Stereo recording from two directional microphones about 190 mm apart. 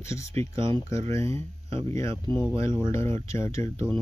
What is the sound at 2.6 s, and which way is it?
Speech, 15° left (ahead or behind).